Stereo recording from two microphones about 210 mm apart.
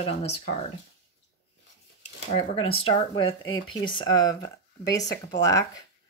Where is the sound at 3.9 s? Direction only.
20° left (ahead or behind).